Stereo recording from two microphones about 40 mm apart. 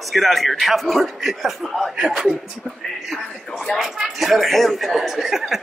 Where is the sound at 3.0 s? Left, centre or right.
Centre.